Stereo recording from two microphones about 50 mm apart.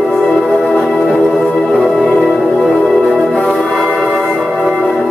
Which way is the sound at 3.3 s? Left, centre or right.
Centre.